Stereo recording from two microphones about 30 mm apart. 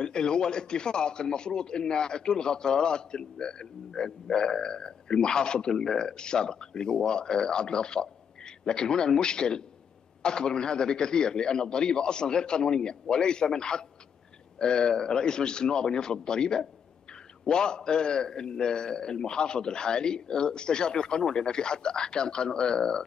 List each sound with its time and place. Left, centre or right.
0.0 s speech: left